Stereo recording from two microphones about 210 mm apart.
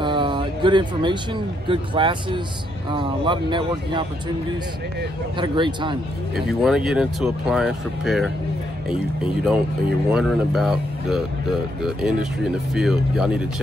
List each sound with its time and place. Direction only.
0.0 s speech: 20° right (ahead or behind)
5.4 s speech: 20° right (ahead or behind)
6.3 s speech: centre (ahead or behind)